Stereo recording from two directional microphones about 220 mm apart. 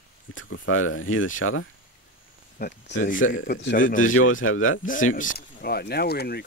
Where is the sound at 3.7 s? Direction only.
35° left (ahead or behind).